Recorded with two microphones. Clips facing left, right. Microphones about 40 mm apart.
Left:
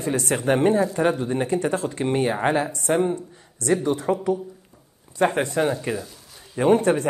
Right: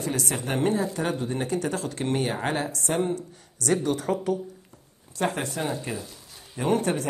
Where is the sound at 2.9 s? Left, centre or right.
Centre.